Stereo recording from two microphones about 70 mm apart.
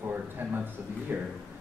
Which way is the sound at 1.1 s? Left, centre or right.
Right.